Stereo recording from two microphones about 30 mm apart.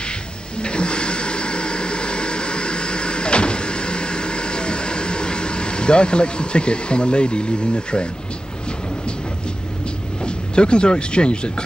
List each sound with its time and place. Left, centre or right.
0.6 s vehicle: left
10.2 s speech: left